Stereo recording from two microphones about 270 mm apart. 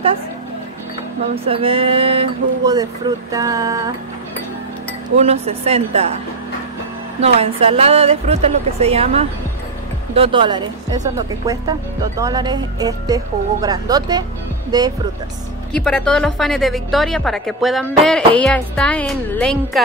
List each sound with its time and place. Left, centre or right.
1.3 s speech: right
5.1 s a woman's voice: right
7.2 s a woman's voice: right
15.7 s a woman's voice: centre